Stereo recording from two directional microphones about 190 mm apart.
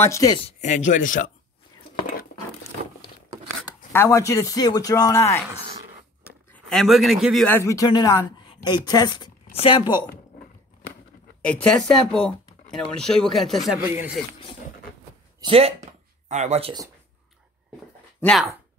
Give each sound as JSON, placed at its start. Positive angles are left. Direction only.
{"t": 0.0, "sound": "speech", "side_deg": 15}
{"t": 0.5, "sound": "speech", "side_deg": 40}
{"t": 2.0, "sound": "a sound", "side_deg": 45}
{"t": 3.9, "sound": "speech", "side_deg": 15}
{"t": 6.5, "sound": "a man's voice", "side_deg": 0}
{"t": 7.4, "sound": "speech", "side_deg": 15}
{"t": 11.4, "sound": "speech", "side_deg": 5}
{"t": 15.4, "sound": "speech", "side_deg": -30}